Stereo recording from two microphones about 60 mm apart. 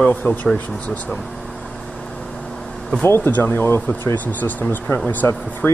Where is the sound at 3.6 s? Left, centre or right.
Left.